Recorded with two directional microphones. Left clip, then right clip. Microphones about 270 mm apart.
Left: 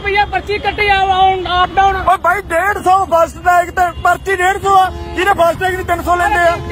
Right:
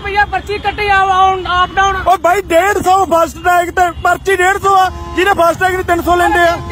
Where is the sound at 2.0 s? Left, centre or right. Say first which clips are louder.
Right 2 dB; right.